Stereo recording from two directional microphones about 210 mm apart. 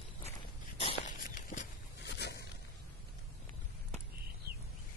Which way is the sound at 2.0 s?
55° left (ahead or behind).